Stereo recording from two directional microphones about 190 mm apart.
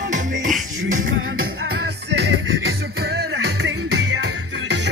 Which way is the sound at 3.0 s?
60° right (ahead or behind).